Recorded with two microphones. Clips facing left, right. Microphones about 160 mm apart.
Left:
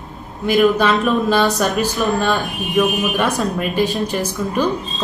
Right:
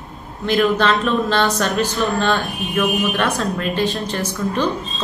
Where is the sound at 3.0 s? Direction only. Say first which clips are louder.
Left 1 dB; 20° left (ahead or behind).